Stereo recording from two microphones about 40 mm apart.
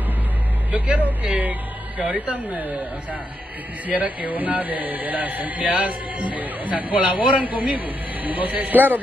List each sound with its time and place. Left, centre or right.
0.9 s a man's voice: right
3.8 s a man's voice: right